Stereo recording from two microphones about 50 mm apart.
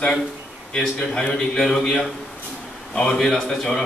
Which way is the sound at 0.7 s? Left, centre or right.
Centre.